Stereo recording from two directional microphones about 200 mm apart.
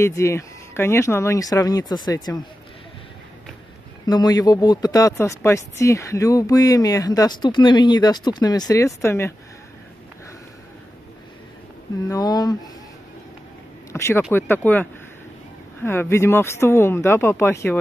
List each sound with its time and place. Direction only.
0.0 s speech: 15° left (ahead or behind)
4.0 s speech: 20° left (ahead or behind)
12.1 s speech: 20° left (ahead or behind)
13.9 s speech: 15° left (ahead or behind)